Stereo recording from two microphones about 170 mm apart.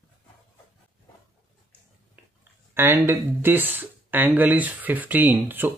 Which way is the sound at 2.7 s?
15° right (ahead or behind).